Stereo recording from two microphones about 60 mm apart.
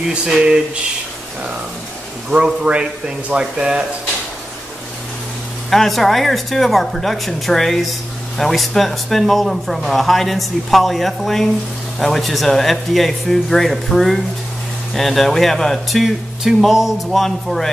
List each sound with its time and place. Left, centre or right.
0.1 s speech: centre
2.3 s speech: centre
5.7 s speech: centre